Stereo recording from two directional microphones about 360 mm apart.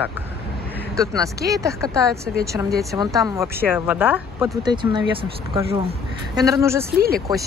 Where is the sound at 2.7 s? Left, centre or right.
Centre.